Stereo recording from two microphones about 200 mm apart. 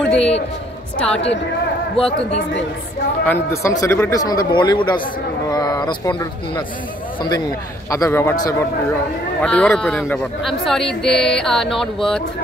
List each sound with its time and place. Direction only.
0.0 s a sound: 5° left (ahead or behind)
0.9 s a man's voice: 5° left (ahead or behind)
3.3 s a man's voice: 15° left (ahead or behind)
9.4 s a man's voice: 5° left (ahead or behind)